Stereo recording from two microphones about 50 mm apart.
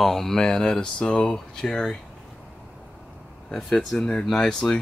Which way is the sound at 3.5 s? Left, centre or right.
Centre.